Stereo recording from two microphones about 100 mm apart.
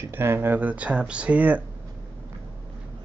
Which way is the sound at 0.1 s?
25° right (ahead or behind).